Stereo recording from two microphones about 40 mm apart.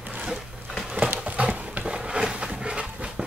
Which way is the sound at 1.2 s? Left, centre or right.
Right.